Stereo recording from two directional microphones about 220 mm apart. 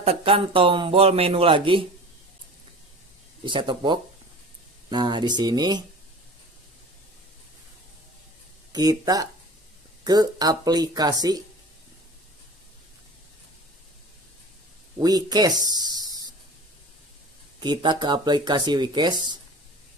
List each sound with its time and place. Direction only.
0.0 s speech: 25° right (ahead or behind)
3.4 s speech: 20° right (ahead or behind)
8.7 s speech: 15° right (ahead or behind)
15.0 s speech: 20° right (ahead or behind)
17.6 s speech: 20° right (ahead or behind)